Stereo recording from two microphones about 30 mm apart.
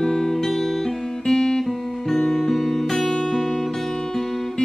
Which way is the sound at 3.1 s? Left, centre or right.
Centre.